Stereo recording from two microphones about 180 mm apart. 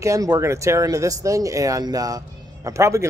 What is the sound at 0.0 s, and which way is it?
Speech, 20° right (ahead or behind).